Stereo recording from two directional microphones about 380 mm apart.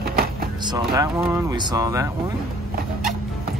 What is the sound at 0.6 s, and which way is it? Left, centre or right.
Speech, centre.